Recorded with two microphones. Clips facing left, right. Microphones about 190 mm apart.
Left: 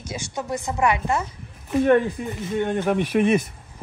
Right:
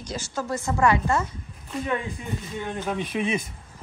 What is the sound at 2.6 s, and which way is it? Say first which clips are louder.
Speech: left 8 dB; 65° left (ahead or behind).